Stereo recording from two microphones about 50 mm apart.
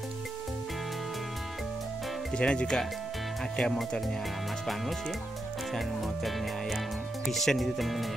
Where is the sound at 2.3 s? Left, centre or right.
Centre.